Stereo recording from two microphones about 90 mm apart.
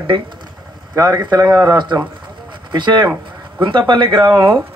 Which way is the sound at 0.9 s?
50° right (ahead or behind).